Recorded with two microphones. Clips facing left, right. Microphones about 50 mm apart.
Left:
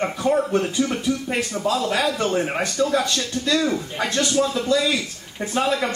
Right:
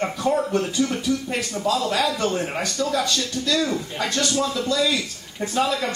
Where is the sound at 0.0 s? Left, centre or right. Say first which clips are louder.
Left 1 dB; left.